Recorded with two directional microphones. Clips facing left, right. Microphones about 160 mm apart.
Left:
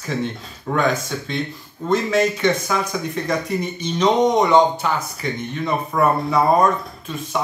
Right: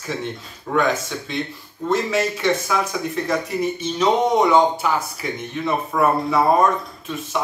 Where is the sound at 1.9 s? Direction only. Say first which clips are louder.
Left 2 dB; 5° right (ahead or behind).